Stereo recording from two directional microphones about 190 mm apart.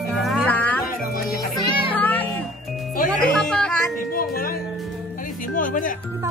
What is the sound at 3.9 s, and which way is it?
Speech, 50° left (ahead or behind).